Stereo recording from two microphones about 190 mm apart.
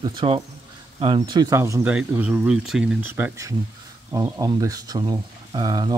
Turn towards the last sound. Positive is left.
turn(degrees=-20)  # may be behind; listen again after turning